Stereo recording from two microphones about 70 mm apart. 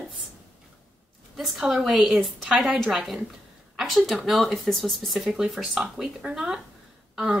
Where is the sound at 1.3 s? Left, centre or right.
Centre.